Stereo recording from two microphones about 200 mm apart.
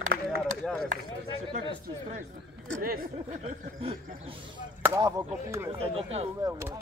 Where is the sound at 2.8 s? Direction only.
45° right (ahead or behind).